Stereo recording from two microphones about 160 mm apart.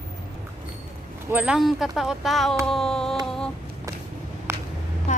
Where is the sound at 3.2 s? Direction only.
5° left (ahead or behind).